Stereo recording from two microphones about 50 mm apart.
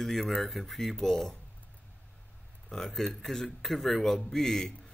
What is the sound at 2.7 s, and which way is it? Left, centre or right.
A man's voice, centre.